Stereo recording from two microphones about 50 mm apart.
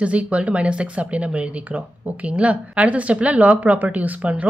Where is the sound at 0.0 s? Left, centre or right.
Right.